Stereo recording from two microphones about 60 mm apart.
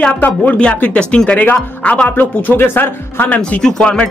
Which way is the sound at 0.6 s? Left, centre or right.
Centre.